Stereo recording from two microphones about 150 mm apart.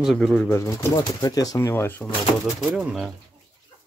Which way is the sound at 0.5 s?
20° left (ahead or behind).